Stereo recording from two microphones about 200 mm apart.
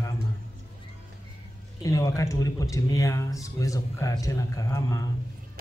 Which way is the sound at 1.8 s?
15° left (ahead or behind).